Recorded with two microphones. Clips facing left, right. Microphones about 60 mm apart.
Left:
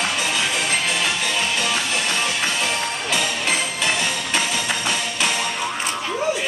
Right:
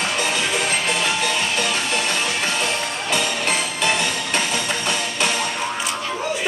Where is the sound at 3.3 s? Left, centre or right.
Right.